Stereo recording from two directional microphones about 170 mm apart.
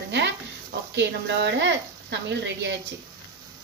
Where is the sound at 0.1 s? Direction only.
90° right.